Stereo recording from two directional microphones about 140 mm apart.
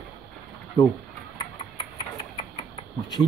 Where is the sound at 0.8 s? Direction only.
35° left (ahead or behind).